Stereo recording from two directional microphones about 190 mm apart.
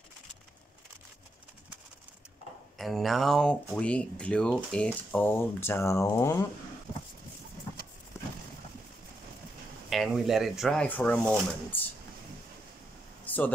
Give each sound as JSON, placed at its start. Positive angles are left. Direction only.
{"t": 2.8, "sound": "speech", "side_deg": 0}
{"t": 9.8, "sound": "speech", "side_deg": 0}
{"t": 13.2, "sound": "a sound", "side_deg": 10}